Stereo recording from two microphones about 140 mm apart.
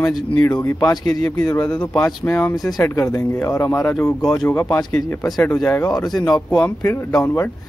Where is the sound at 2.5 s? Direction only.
25° left (ahead or behind); by 4.6 s 5° left (ahead or behind).